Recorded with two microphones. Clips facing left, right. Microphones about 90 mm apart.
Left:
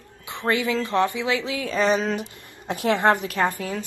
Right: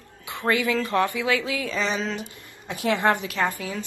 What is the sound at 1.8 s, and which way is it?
A woman's voice, 45° left (ahead or behind).